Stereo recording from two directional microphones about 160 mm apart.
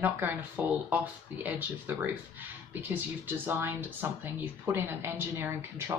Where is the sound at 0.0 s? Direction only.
10° right (ahead or behind).